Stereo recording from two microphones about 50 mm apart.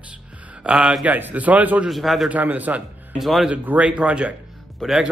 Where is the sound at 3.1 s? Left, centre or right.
Centre.